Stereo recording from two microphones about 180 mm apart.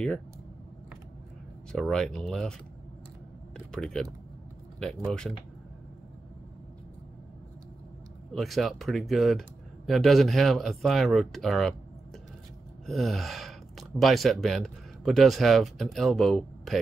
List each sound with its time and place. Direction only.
1.7 s speech: 5° left (ahead or behind)
3.5 s speech: 5° left (ahead or behind)
8.3 s speech: centre (ahead or behind)
12.8 s speech: centre (ahead or behind)